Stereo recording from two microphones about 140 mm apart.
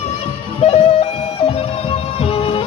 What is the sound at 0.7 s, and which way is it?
Music, 45° left (ahead or behind).